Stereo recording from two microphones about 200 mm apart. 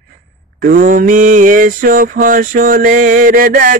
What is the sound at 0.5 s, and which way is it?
Mantra, 45° right (ahead or behind).